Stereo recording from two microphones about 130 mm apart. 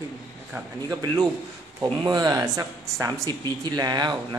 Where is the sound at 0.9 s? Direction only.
30° right (ahead or behind).